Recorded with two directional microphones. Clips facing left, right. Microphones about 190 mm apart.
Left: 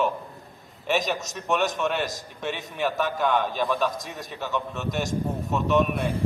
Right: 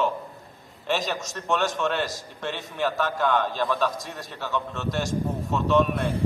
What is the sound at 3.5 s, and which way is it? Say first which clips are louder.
A man's voice: even; 15° left (ahead or behind).